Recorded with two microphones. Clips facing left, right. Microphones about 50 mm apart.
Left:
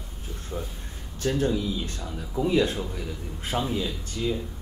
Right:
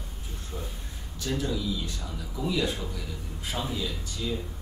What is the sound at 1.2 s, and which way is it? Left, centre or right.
Speech, left.